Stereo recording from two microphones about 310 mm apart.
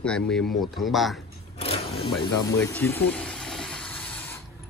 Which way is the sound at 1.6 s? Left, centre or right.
Centre.